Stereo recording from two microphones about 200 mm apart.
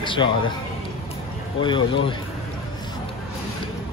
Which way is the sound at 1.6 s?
25° left (ahead or behind).